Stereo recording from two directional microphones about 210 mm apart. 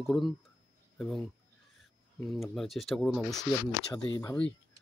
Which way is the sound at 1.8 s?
Centre (ahead or behind).